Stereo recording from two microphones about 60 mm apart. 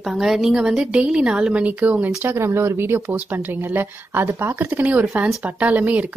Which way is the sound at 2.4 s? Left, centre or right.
Right.